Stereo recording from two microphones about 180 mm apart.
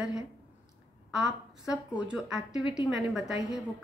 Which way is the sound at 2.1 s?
5° right (ahead or behind).